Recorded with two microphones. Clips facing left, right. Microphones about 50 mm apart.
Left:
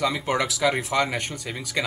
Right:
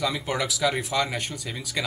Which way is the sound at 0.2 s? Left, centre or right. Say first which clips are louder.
Left 2 dB; centre.